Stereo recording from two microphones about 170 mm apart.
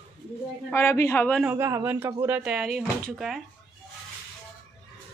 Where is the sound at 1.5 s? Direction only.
15° right (ahead or behind).